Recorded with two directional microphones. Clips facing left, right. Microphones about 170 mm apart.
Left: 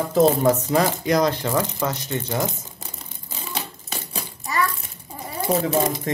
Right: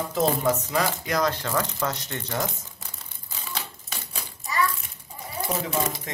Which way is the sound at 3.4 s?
25° left (ahead or behind).